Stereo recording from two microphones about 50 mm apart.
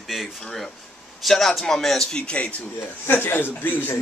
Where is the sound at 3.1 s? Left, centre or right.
Left.